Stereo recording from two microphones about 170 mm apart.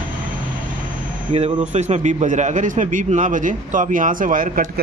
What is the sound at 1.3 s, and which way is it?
A man's voice, 40° right (ahead or behind).